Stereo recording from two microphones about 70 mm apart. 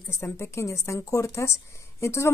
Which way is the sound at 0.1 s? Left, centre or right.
Left.